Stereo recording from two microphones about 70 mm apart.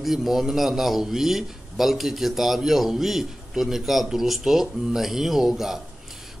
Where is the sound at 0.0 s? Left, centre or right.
Centre.